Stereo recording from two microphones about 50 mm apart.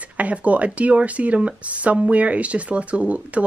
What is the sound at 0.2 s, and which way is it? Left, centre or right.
A woman's voice, right.